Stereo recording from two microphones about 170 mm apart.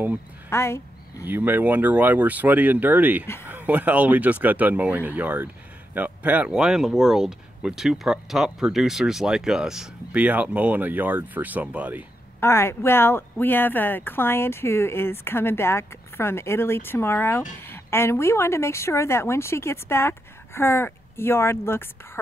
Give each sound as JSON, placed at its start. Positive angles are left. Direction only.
{"t": 0.5, "sound": "speech", "side_deg": 15}
{"t": 1.2, "sound": "speech", "side_deg": -10}
{"t": 12.4, "sound": "speech", "side_deg": 15}